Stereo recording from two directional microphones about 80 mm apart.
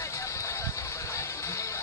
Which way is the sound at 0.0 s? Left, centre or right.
Left.